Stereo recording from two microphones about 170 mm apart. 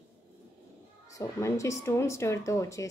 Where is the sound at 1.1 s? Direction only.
20° left (ahead or behind).